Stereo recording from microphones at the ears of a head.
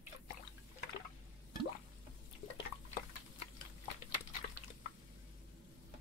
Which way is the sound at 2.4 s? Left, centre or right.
Left.